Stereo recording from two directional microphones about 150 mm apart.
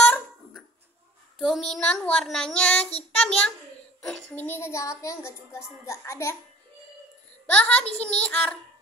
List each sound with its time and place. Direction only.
0.0 s dog: centre (ahead or behind)
1.4 s child singing: centre (ahead or behind)
3.2 s a child's voice: 5° left (ahead or behind)
7.5 s a woman's voice: 10° left (ahead or behind)